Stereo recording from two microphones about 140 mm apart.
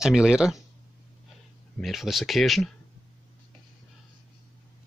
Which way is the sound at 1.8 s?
Centre (ahead or behind).